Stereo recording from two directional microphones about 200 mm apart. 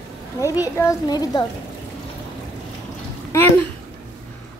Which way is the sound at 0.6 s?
15° left (ahead or behind).